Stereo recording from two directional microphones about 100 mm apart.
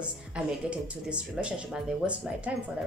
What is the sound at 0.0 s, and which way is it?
Speech, 10° right (ahead or behind).